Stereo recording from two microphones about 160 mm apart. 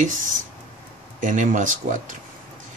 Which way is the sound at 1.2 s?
55° right (ahead or behind).